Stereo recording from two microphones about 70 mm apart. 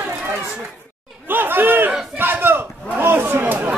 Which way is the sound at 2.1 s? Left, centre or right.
Right.